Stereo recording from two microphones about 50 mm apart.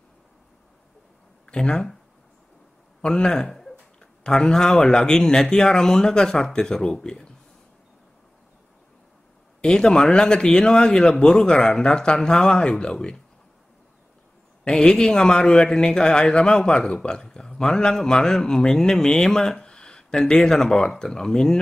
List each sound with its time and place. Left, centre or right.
1.4 s speech: centre
3.0 s a man's voice: centre
9.6 s a man's voice: centre
14.7 s a man's voice: centre